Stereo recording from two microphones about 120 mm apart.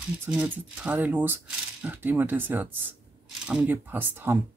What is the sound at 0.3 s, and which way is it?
Speech, 10° right (ahead or behind).